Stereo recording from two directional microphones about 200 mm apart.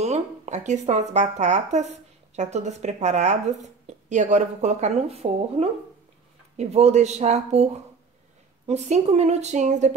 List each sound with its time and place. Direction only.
0.0 s speech: 35° right (ahead or behind)